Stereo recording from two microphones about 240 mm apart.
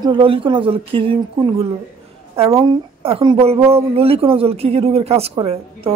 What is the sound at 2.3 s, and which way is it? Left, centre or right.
A woman's voice, right.